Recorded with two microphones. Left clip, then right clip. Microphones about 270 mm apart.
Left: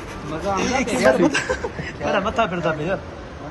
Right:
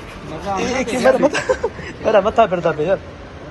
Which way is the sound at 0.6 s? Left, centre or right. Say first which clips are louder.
Right 2 dB; centre.